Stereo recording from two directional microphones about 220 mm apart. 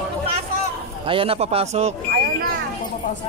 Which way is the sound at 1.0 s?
25° right (ahead or behind).